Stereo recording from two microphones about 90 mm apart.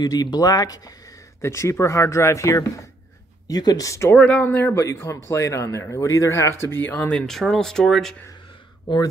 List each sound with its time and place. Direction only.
0.0 s speech: 45° left (ahead or behind)
3.4 s speech: 45° left (ahead or behind)
4.1 s speech: 15° left (ahead or behind)
7.2 s speech: 5° left (ahead or behind)
8.8 s speech: 45° left (ahead or behind)